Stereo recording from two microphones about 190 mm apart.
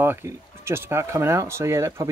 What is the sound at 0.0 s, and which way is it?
Speech, 10° right (ahead or behind).